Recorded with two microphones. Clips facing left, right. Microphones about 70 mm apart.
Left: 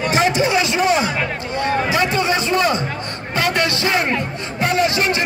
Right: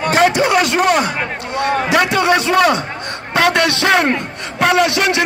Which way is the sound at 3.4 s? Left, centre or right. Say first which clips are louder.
Right 5 dB; right.